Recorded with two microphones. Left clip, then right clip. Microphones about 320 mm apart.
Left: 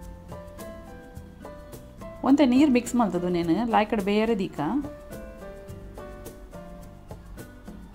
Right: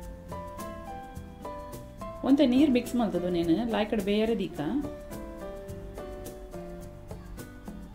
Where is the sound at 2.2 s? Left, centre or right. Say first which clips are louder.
Left 3 dB; centre.